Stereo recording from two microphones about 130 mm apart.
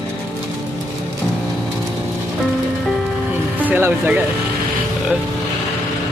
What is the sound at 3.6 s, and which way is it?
Music, 15° right (ahead or behind).